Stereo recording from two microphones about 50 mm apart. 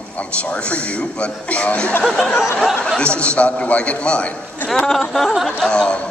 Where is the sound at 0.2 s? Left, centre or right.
Left.